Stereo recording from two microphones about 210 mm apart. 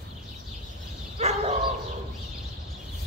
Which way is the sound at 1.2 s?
30° right (ahead or behind).